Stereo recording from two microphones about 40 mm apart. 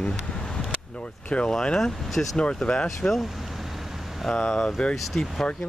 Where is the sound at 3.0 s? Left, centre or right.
Left.